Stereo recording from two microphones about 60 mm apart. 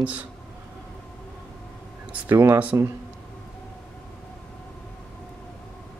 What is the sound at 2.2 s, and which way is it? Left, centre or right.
Speech, right.